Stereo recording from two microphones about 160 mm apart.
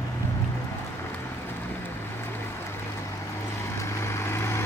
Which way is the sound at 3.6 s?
15° left (ahead or behind).